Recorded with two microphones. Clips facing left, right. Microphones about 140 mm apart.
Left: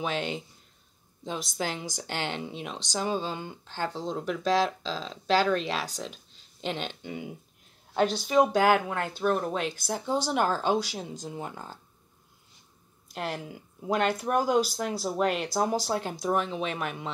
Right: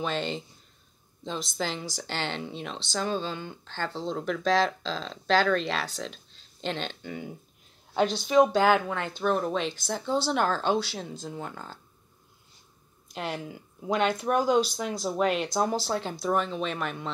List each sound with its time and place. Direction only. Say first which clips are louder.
0.0 s speech: right 1 dB; 10° left (ahead or behind)
13.1 s speech: even; 5° left (ahead or behind)